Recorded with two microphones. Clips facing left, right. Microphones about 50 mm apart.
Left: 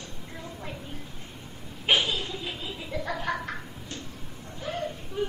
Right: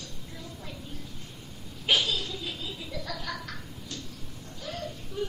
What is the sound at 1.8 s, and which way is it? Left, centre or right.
Laughter, left.